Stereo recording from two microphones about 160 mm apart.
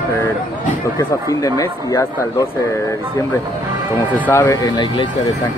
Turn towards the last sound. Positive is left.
turn(degrees=30)  # may be behind; listen again after turning